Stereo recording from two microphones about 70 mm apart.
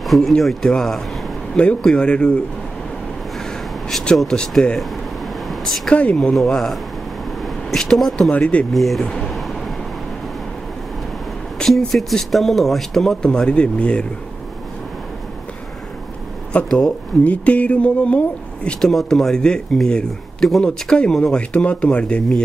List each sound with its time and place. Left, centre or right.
0.0 s a sound: centre
0.3 s speech: centre
3.9 s speech: centre
5.5 s a sound: centre
5.9 s speech: centre
6.3 s speech: centre
8.3 s speech: centre
8.7 s speech: centre
11.7 s speech: centre
16.6 s speech: centre
17.2 s speech: left
18.9 s speech: centre